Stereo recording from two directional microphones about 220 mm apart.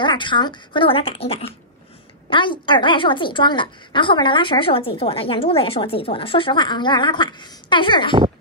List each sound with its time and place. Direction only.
0.0 s a woman's voice: 20° left (ahead or behind)